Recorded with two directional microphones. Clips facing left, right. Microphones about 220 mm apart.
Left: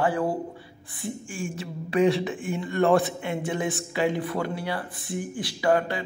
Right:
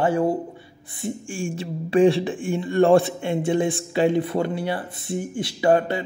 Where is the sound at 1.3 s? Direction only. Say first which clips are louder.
Right 5 dB; 30° right (ahead or behind).